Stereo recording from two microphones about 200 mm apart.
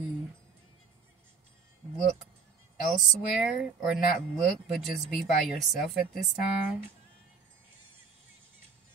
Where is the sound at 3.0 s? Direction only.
Centre (ahead or behind).